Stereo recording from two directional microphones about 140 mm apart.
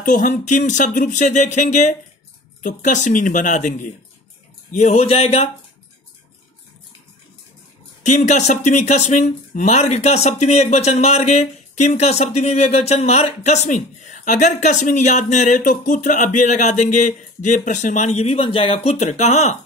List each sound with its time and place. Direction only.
0.0 s speech: 65° left (ahead or behind); by 5.5 s 45° left (ahead or behind)
8.0 s speech: 55° left (ahead or behind)